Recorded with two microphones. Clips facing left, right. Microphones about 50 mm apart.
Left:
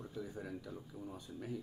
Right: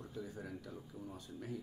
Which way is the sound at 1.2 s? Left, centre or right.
Centre.